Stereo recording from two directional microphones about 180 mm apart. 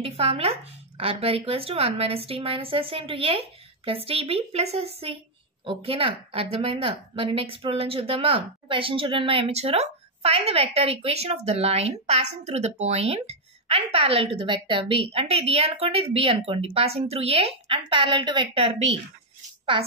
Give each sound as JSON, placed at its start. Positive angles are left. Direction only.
{"t": 0.0, "sound": "a woman's voice", "side_deg": -30}